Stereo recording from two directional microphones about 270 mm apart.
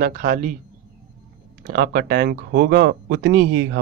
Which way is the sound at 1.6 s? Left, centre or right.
Right.